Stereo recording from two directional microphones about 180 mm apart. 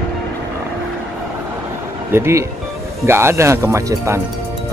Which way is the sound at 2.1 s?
15° right (ahead or behind).